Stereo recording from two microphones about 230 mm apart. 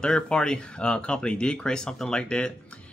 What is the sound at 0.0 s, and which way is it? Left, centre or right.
Speech, centre.